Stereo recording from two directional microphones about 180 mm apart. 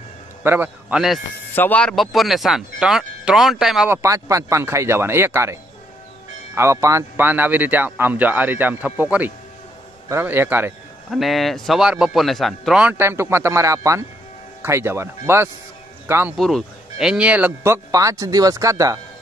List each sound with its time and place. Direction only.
0.4 s speech: 10° right (ahead or behind)
1.5 s speech: 10° left (ahead or behind)
3.9 s a man's voice: 15° right (ahead or behind)
11.1 s a man's voice: centre (ahead or behind)
16.3 s a man's voice: centre (ahead or behind); by 18.9 s 20° right (ahead or behind)